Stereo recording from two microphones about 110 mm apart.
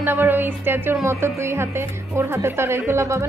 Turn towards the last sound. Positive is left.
turn(degrees=-25)  # may be behind; listen again after turning